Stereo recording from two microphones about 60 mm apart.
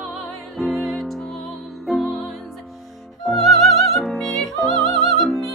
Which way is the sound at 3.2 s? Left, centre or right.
Centre.